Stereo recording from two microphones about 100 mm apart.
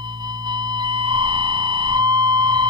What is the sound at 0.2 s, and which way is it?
Sine wave, 45° right (ahead or behind).